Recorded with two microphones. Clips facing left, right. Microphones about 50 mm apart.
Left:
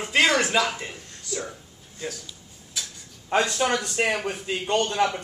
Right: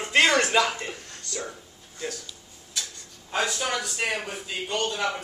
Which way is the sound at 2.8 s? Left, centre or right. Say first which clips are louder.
Even; centre.